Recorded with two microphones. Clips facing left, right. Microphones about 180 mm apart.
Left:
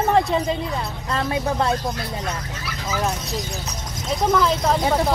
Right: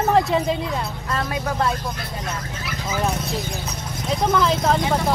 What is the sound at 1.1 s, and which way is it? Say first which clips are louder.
Speech: left 3 dB; 25° left (ahead or behind).